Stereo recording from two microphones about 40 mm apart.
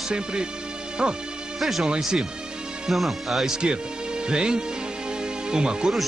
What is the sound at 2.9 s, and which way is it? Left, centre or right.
Speech, centre.